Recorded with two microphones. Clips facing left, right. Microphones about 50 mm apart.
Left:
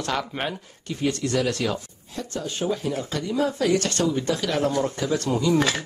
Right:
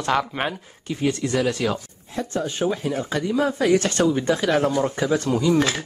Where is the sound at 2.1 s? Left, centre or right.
Right.